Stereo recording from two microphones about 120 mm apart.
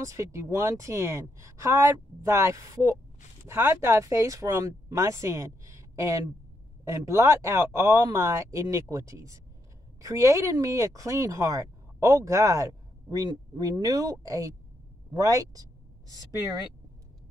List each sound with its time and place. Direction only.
0.0 s speech: 25° right (ahead or behind)